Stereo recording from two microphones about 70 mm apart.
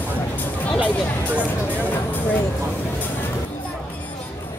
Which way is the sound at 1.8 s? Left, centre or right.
Left.